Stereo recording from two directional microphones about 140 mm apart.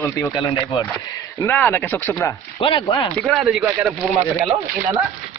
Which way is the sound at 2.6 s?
35° left (ahead or behind).